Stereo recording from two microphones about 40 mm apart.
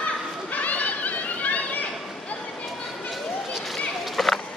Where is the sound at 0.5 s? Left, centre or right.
Left.